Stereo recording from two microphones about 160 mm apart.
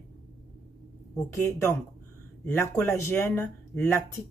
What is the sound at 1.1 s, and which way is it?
Speech, 15° left (ahead or behind).